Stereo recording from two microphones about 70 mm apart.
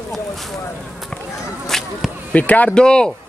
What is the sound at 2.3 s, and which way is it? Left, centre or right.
Speech, left.